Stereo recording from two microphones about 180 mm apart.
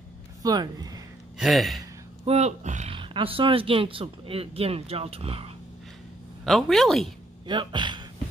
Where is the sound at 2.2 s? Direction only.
35° right (ahead or behind).